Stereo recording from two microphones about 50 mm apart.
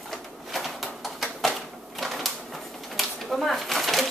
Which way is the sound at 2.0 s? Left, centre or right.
Centre.